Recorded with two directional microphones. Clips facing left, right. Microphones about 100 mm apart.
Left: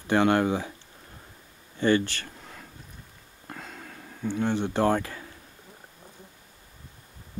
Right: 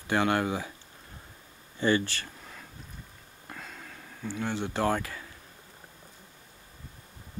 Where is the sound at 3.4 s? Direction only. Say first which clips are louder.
Left 3 dB; 25° left (ahead or behind).